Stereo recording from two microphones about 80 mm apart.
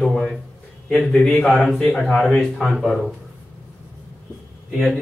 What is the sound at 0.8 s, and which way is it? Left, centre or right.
Speech, centre.